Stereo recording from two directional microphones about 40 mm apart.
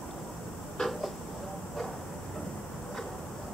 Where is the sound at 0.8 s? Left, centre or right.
Centre.